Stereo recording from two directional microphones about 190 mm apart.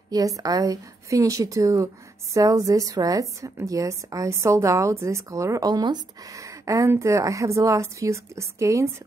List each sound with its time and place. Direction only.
0.1 s a woman's voice: 20° right (ahead or behind)